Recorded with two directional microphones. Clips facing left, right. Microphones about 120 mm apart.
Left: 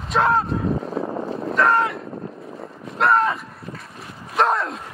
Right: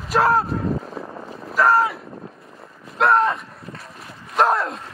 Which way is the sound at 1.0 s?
70° left (ahead or behind).